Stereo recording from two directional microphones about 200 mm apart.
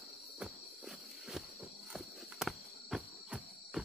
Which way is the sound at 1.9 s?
Centre (ahead or behind).